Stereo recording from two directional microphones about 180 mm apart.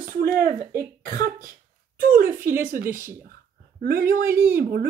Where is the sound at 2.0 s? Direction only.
50° right (ahead or behind).